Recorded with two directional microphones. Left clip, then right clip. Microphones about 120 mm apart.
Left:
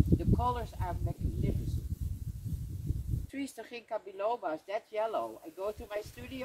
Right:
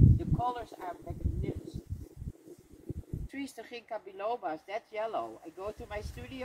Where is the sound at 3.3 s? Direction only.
10° left (ahead or behind).